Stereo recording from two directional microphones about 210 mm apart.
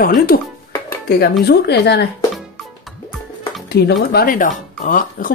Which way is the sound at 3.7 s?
50° left (ahead or behind).